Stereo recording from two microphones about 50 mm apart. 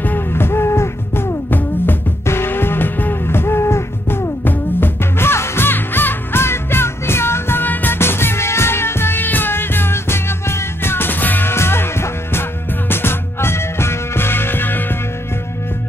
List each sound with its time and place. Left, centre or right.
0.3 s music: left
4.5 s music: left
5.7 s music: left
11.5 s music: left